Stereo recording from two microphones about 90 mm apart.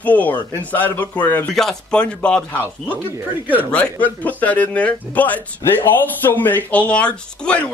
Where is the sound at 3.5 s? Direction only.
10° left (ahead or behind).